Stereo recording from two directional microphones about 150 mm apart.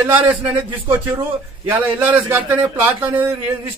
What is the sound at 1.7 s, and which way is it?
A man's voice, 10° right (ahead or behind).